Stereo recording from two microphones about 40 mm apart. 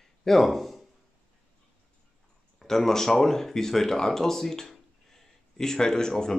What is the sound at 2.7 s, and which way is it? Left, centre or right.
Speech, centre.